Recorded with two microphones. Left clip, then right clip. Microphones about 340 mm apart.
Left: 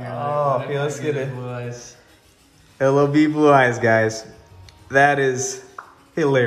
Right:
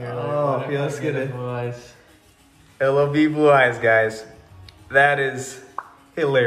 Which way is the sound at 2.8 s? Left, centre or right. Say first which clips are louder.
Left 2 dB; left.